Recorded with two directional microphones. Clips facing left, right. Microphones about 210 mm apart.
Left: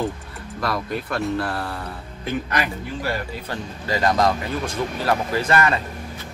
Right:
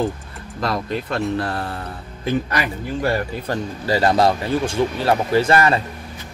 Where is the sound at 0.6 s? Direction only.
25° right (ahead or behind).